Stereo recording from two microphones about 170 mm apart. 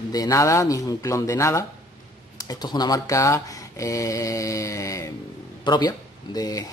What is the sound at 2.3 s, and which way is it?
Speech, 25° left (ahead or behind).